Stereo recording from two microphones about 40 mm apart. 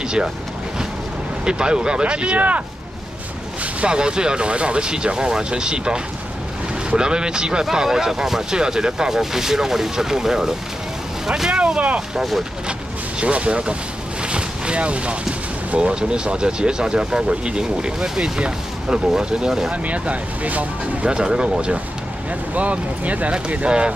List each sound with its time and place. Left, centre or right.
1.4 s speech: right
3.8 s speech: right
11.6 s speech: right
12.2 s speech: centre
13.2 s speech: right
14.2 s boat: right
15.8 s speech: right
19.7 s speech: right
21.0 s speech: right
22.5 s speech: right